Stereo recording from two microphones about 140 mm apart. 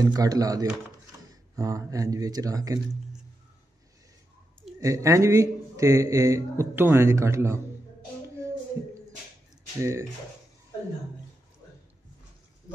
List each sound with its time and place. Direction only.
0.0 s speech: 25° right (ahead or behind)
4.7 s speech: 20° right (ahead or behind)
9.8 s speech: 20° right (ahead or behind)